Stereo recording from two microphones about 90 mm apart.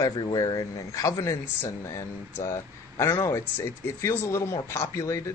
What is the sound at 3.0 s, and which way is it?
Speech, 30° left (ahead or behind).